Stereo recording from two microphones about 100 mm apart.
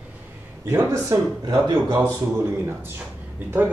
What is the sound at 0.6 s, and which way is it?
Speech, 25° right (ahead or behind).